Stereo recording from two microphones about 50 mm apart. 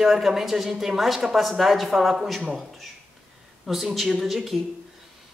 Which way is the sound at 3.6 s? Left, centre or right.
Centre.